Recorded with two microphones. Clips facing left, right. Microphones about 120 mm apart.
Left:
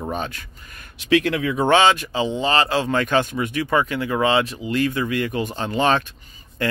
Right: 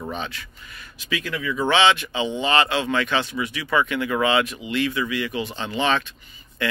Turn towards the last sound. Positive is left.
turn(degrees=45)  # may be behind; listen again after turning